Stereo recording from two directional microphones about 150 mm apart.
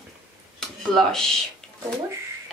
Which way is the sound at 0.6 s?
Centre (ahead or behind).